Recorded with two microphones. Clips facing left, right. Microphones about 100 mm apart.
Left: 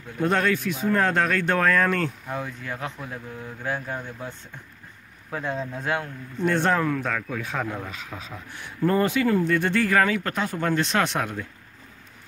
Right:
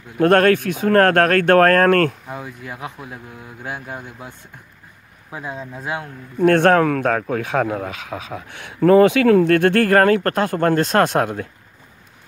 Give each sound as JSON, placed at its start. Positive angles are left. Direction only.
{"t": 0.2, "sound": "speech", "side_deg": -60}
{"t": 2.2, "sound": "speech", "side_deg": -15}
{"t": 6.3, "sound": "speech", "side_deg": -60}